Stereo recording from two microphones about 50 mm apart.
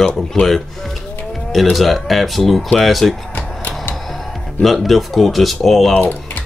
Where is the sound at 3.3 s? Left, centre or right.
Left.